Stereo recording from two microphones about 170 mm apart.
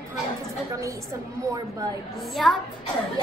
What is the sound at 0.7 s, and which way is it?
Speech, 20° right (ahead or behind).